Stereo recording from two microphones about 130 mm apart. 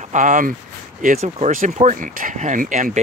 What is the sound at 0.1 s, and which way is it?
Speech, 80° right.